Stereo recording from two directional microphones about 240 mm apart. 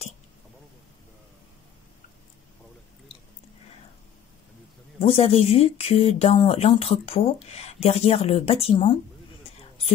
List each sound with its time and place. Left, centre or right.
5.0 s speech: left